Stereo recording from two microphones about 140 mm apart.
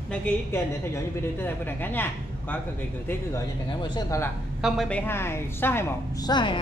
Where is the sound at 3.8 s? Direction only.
25° left (ahead or behind).